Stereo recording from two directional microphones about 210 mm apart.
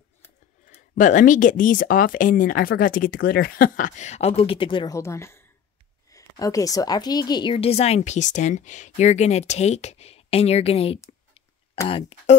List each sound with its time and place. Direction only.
0.7 s a woman's voice: 35° left (ahead or behind)